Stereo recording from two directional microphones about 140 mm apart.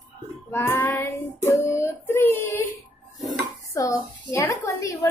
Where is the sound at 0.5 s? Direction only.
15° left (ahead or behind).